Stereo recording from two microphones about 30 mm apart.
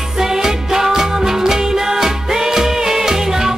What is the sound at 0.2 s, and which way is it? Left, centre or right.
Music, centre.